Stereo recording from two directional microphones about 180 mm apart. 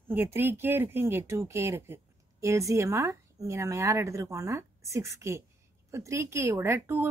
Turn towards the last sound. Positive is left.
turn(degrees=-10)  # may be behind; listen again after turning